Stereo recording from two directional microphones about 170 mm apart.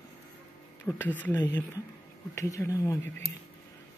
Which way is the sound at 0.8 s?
10° left (ahead or behind).